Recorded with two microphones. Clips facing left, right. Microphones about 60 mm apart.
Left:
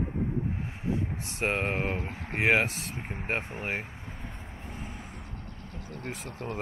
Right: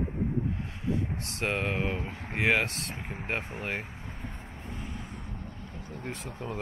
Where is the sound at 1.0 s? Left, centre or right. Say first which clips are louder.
Left 1 dB; centre.